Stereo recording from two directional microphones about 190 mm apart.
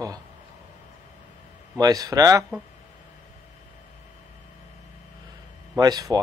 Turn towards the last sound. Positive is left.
turn(degrees=-20)  # may be behind; listen again after turning